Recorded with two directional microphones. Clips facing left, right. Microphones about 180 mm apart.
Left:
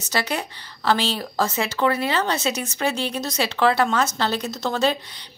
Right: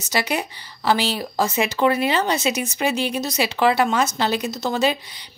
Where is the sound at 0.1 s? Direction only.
10° right (ahead or behind).